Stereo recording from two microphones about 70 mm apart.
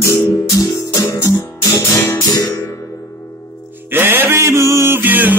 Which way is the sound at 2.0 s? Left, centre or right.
Left.